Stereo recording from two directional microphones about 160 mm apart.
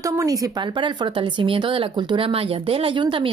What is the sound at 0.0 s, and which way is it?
Speech, 20° right (ahead or behind).